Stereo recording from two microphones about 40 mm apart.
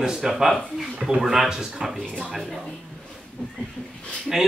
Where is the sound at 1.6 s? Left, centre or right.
Centre.